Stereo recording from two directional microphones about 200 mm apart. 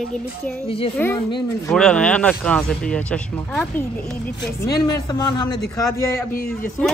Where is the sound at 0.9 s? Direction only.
10° left (ahead or behind).